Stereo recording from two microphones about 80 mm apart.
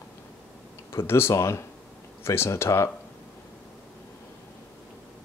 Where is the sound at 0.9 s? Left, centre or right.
Left.